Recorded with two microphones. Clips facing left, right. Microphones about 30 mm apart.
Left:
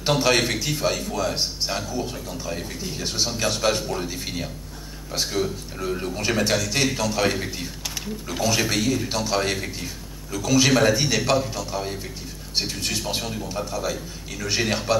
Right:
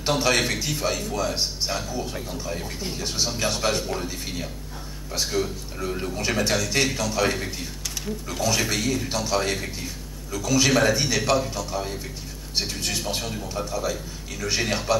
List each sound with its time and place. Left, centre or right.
0.0 s a man's voice: centre
3.1 s a man's voice: centre
4.0 s a man's voice: centre
8.8 s a man's voice: centre
9.1 s a man's voice: centre
10.7 s a man's voice: centre